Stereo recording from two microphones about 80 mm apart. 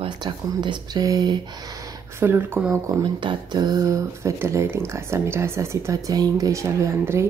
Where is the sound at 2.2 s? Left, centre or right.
Right.